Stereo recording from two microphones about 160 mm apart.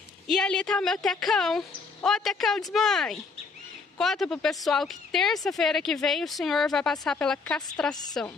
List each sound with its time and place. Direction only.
0.3 s a woman's voice: 5° left (ahead or behind)
7.9 s a woman's voice: 25° left (ahead or behind)